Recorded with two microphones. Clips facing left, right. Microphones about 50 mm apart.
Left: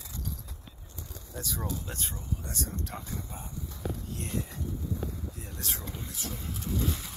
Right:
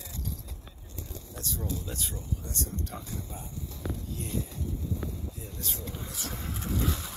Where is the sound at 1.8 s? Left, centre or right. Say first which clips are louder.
Right 1 dB; left.